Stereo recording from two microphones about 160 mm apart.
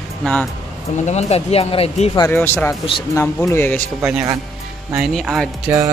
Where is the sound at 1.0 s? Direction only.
45° left (ahead or behind).